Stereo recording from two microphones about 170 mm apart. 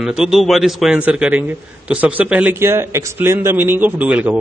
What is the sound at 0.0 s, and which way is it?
A man's voice, 5° right (ahead or behind).